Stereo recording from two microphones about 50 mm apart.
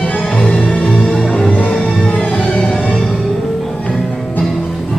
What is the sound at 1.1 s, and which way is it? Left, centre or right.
Music, centre.